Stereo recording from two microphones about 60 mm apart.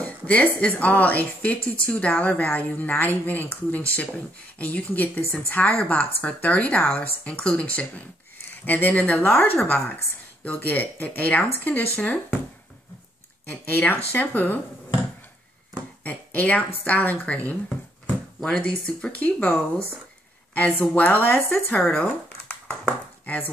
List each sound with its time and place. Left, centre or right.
0.0 s a woman's voice: centre
13.5 s a woman's voice: left
16.0 s a woman's voice: left
20.8 s speech: left
21.9 s a sound: left